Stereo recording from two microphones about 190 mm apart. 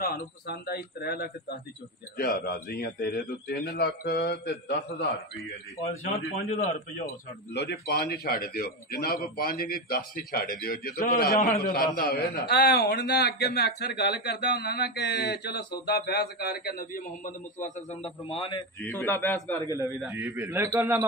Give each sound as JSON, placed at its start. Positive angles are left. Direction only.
{"t": 0.0, "sound": "a man's voice", "side_deg": 55}
{"t": 7.1, "sound": "a man's voice", "side_deg": 60}
{"t": 18.8, "sound": "a man's voice", "side_deg": 15}
{"t": 20.1, "sound": "a man's voice", "side_deg": -15}